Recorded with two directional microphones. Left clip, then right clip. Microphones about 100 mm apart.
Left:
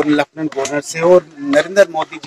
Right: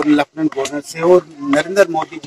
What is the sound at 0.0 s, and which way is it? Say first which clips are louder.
A man's voice: right 1 dB; 15° right (ahead or behind).